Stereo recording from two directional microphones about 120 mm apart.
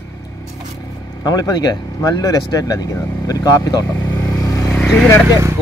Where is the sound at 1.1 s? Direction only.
30° left (ahead or behind).